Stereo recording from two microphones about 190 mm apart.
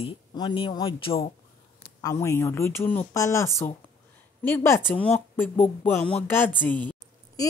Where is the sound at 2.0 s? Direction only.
15° left (ahead or behind).